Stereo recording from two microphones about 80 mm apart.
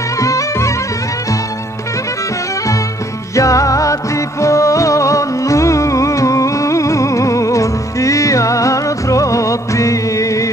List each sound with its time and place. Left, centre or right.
0.2 s music: left
3.3 s music: left